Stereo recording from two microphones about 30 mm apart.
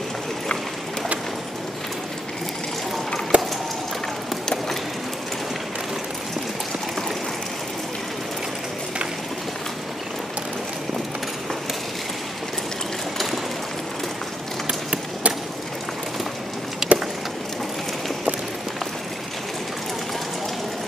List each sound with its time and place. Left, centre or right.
3.3 s a sound: right
14.7 s run: right
16.8 s vehicle: centre